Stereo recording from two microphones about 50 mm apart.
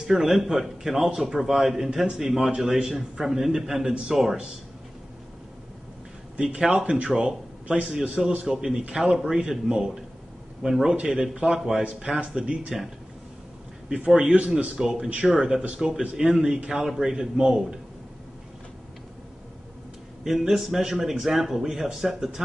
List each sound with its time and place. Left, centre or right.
0.0 s a man's voice: centre
6.3 s a man's voice: right
13.8 s a man's voice: centre
20.2 s a man's voice: centre